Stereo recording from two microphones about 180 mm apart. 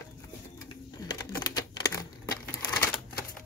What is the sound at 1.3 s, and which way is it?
Typing, 20° left (ahead or behind).